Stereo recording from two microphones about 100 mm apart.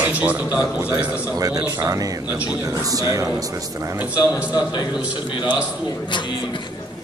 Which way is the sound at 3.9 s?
15° right (ahead or behind).